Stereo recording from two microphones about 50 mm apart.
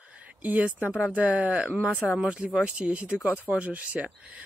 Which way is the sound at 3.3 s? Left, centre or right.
Right.